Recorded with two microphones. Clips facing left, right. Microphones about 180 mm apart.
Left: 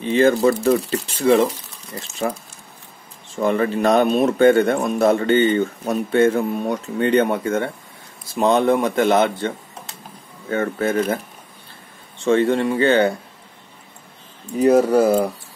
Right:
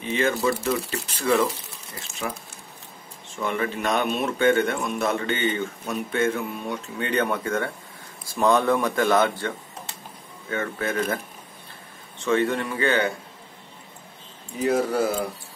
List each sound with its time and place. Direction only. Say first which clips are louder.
0.0 s speech: left 8 dB; 30° left (ahead or behind)
3.3 s speech: left 8 dB; 35° left (ahead or behind)
10.5 s speech: left 7 dB; 35° left (ahead or behind)
12.3 s speech: left 6 dB; 30° left (ahead or behind)
14.6 s speech: left 8 dB; 40° left (ahead or behind)